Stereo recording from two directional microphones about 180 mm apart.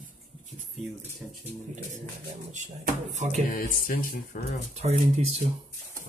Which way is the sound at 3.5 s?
55° left (ahead or behind).